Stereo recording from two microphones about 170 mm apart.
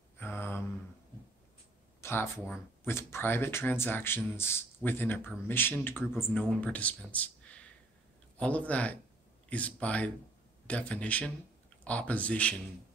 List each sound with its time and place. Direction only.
0.2 s mantra: 15° left (ahead or behind)
2.0 s speech: 15° left (ahead or behind)